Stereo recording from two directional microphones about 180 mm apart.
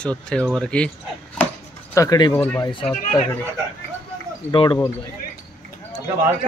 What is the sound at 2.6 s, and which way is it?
Speech, 30° left (ahead or behind).